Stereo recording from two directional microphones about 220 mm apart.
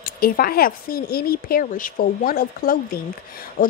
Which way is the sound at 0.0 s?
40° left (ahead or behind).